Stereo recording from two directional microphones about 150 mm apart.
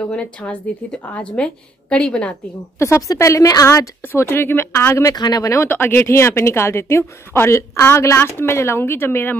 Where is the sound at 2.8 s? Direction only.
20° left (ahead or behind).